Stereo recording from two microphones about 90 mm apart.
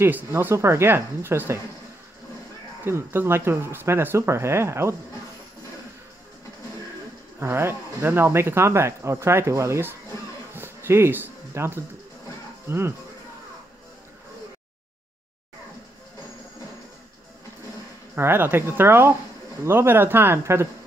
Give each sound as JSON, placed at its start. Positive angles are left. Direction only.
{"t": 0.0, "sound": "speech", "side_deg": -25}
{"t": 2.8, "sound": "speech", "side_deg": -25}
{"t": 7.3, "sound": "speech", "side_deg": -25}
{"t": 10.5, "sound": "music", "side_deg": -25}
{"t": 12.6, "sound": "speech", "side_deg": -25}
{"t": 18.1, "sound": "speech", "side_deg": -25}